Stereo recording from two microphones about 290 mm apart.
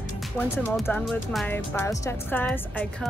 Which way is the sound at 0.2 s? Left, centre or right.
Centre.